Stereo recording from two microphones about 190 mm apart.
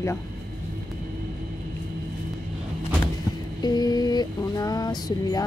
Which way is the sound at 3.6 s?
20° left (ahead or behind).